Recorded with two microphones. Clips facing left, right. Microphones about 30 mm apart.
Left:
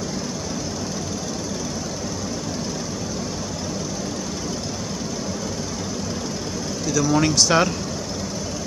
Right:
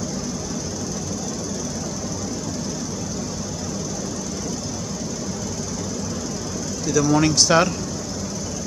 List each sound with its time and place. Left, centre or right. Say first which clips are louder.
6.9 s speech: right 2 dB; centre